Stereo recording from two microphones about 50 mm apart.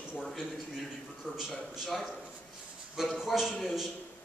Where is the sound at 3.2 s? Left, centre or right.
Centre.